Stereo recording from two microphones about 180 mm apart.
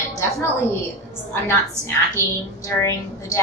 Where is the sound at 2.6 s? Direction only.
15° left (ahead or behind).